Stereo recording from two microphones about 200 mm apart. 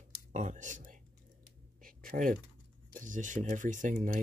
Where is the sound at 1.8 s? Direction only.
45° right (ahead or behind).